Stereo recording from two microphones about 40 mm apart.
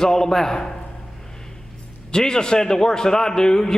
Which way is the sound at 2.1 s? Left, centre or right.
Centre.